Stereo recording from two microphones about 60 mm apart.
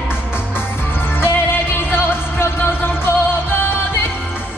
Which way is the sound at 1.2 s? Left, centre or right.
Left.